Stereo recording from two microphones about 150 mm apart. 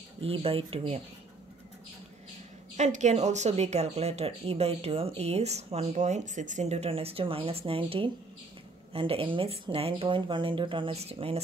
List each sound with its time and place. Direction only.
0.2 s speech: 40° right (ahead or behind)
2.8 s speech: 50° right (ahead or behind)